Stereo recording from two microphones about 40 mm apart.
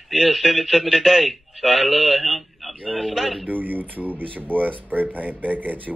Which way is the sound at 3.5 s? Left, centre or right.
Right.